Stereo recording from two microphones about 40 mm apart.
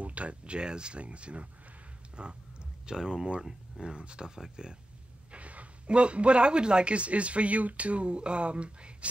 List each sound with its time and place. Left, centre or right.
0.0 s a man's voice: right
5.3 s a man's voice: right